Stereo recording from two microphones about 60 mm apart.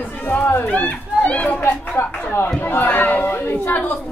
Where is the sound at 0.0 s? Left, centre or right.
Left.